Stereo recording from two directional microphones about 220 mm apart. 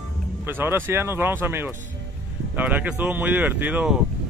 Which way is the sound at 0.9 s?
10° right (ahead or behind).